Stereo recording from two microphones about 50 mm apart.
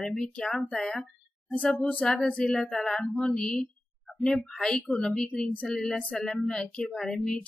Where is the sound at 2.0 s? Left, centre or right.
Left.